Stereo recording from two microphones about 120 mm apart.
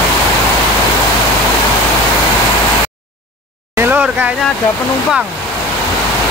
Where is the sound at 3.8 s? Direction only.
15° right (ahead or behind).